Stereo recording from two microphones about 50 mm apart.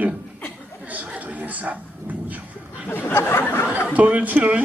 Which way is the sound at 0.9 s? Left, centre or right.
Right.